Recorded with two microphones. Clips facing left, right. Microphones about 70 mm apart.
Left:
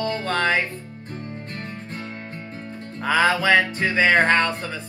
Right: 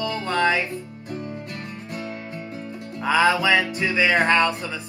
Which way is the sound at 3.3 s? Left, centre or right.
Left.